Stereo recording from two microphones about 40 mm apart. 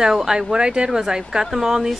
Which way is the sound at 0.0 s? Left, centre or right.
Centre.